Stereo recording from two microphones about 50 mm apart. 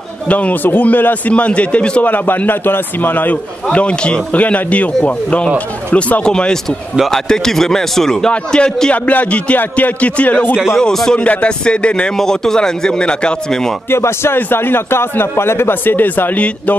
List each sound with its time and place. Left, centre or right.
0.3 s a man's voice: left
0.7 s speech: left
1.3 s a man's voice: left
6.2 s a man's voice: centre
8.9 s a man's voice: left
10.5 s speech: centre
10.8 s a man's voice: centre
13.8 s a man's voice: left
16.3 s a man's voice: left